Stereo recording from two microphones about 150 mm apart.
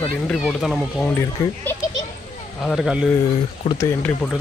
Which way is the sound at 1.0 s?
15° left (ahead or behind).